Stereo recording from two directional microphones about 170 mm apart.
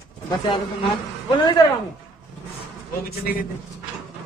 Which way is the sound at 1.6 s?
20° left (ahead or behind).